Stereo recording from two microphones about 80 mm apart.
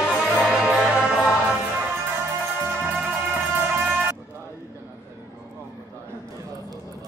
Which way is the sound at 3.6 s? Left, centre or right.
Right.